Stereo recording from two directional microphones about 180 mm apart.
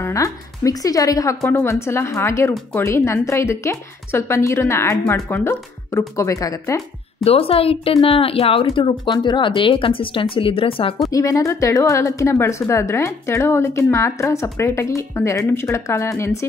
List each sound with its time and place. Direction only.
0.0 s speech: 20° left (ahead or behind)
7.2 s speech: 35° left (ahead or behind)
11.1 s speech: 20° left (ahead or behind)